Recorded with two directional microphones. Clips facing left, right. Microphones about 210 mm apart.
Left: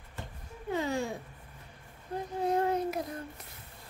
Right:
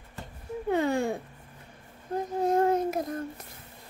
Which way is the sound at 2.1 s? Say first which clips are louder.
Right 5 dB; 45° right (ahead or behind).